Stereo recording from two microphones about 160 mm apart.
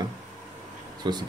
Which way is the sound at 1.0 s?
30° right (ahead or behind).